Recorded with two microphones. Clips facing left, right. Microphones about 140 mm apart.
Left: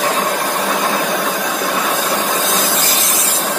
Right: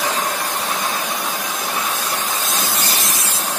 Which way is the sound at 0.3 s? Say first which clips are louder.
Left 6 dB; 70° left (ahead or behind).